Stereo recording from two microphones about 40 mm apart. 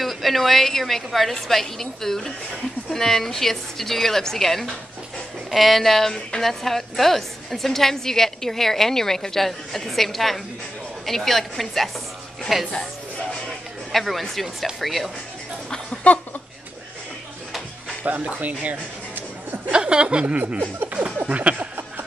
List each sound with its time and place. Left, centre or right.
0.0 s a woman's voice: centre
12.5 s a woman's voice: centre
13.9 s a woman's voice: centre
18.1 s speech: right
19.7 s speech: right
20.3 s a sound: right